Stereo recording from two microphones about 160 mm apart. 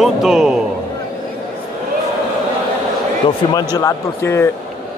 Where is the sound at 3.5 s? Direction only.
20° left (ahead or behind).